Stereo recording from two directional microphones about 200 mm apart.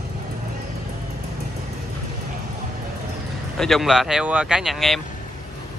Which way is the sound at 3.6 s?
Centre (ahead or behind).